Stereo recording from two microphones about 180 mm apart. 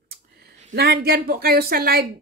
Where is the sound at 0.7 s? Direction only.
60° right (ahead or behind).